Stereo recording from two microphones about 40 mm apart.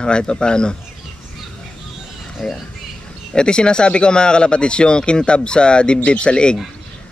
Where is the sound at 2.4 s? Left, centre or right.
Centre.